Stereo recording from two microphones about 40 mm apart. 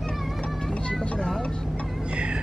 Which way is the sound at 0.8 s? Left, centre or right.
Left.